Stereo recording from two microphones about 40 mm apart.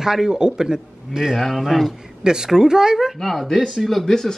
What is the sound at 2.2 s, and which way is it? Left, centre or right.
Speech, centre.